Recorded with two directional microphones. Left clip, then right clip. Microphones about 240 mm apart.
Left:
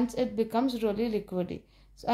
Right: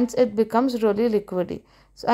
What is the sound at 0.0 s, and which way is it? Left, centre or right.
Speech, right.